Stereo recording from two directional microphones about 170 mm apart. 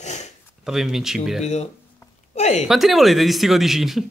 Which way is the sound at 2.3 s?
45° left (ahead or behind).